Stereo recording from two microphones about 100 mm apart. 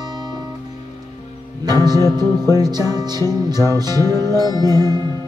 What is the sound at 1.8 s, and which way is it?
Music, 30° left (ahead or behind).